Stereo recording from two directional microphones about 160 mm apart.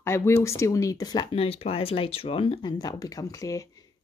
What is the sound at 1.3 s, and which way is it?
Speech, 35° left (ahead or behind).